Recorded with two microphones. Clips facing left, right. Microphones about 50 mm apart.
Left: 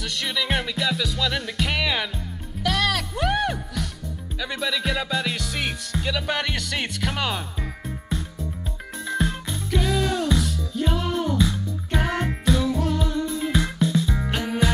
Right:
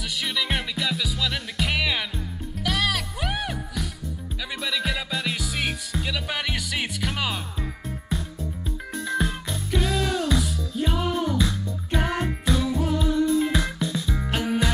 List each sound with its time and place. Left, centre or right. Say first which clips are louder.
0.2 s music: left 2 dB; centre
8.9 s music: left 1 dB; centre
9.8 s music: left 2 dB; left
10.2 s music: left 1 dB; centre